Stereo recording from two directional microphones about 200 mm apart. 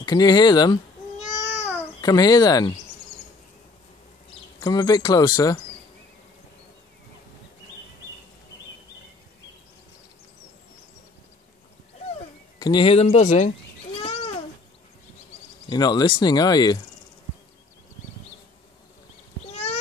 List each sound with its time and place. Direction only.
0.0 s a child's voice: 20° left (ahead or behind)
4.6 s speech: 20° left (ahead or behind)
12.5 s speech: 20° left (ahead or behind); by 13.5 s 40° left (ahead or behind)
14.0 s a sound: 30° left (ahead or behind)
15.7 s speech: 20° left (ahead or behind)
19.5 s a sound: 30° left (ahead or behind)